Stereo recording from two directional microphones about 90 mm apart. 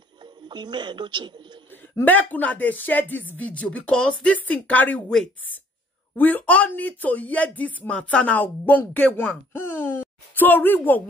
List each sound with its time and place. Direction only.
0.2 s a sound: 55° right (ahead or behind)
1.7 s speech: 20° left (ahead or behind)
6.1 s speech: 20° left (ahead or behind)